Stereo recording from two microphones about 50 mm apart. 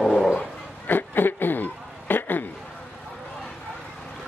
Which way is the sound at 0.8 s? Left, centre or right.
Left.